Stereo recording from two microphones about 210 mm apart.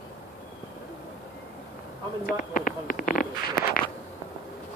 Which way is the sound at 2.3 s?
40° left (ahead or behind).